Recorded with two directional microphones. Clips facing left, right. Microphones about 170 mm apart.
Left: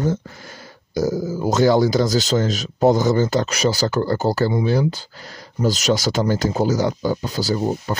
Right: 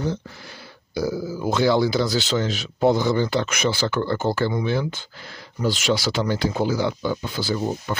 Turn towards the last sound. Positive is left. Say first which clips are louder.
# left 3 dB
turn(degrees=40)  # may be behind; listen again after turning